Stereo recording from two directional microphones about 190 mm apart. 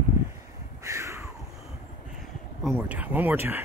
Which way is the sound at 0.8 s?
15° right (ahead or behind).